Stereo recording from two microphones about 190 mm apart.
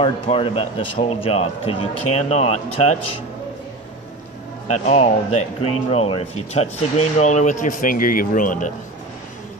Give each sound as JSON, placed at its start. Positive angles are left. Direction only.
{"t": 0.0, "sound": "speech", "side_deg": 30}
{"t": 4.6, "sound": "speech", "side_deg": 35}